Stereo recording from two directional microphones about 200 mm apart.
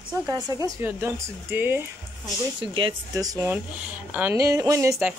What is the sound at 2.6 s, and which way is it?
Speech, 25° right (ahead or behind).